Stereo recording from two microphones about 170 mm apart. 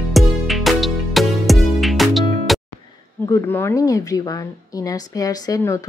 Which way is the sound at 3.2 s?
15° left (ahead or behind).